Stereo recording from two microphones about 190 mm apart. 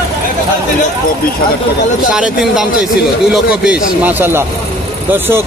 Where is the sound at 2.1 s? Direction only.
Centre (ahead or behind).